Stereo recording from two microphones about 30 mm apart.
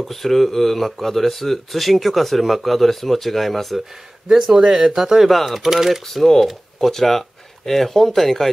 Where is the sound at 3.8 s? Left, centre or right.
Centre.